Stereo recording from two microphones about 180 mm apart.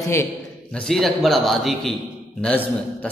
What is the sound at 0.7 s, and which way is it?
A man's voice, centre (ahead or behind).